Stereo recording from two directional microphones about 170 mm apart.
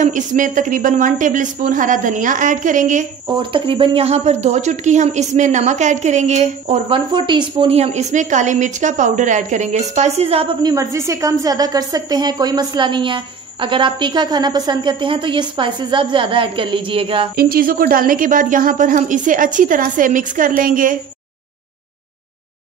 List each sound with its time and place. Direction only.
0.0 s a woman's voice: 50° right (ahead or behind)
3.3 s a woman's voice: 30° right (ahead or behind)
7.1 s a woman's voice: 25° right (ahead or behind)
10.6 s a woman's voice: 20° right (ahead or behind)
17.4 s a woman's voice: 60° right (ahead or behind)